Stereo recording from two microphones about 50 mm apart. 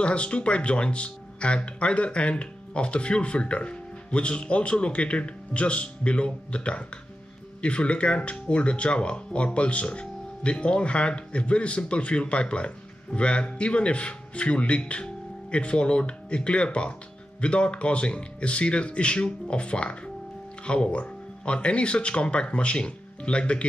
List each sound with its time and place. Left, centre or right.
0.0 s speech: left